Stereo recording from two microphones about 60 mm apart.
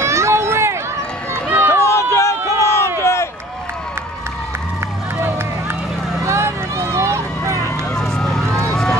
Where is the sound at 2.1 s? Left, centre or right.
Left.